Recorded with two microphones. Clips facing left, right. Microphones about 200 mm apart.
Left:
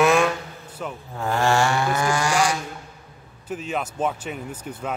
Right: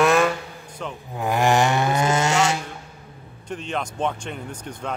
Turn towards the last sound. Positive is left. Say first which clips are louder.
# left 1 dB
turn(degrees=5)  # may be behind; listen again after turning